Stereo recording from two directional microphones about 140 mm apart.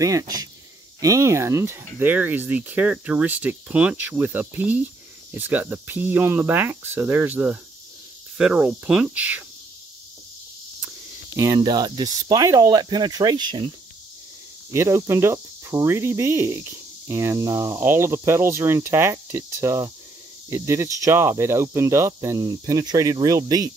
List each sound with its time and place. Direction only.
0.0 s speech: 25° right (ahead or behind)
11.5 s speech: 30° right (ahead or behind)
14.7 s speech: 20° right (ahead or behind)